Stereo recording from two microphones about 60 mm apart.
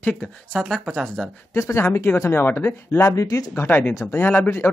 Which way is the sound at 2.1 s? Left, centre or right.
Left.